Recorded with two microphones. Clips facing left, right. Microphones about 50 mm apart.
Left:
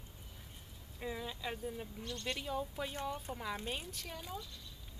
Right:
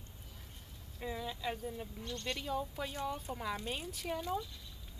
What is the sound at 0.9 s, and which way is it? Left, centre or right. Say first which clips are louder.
Speech: right 1 dB; centre.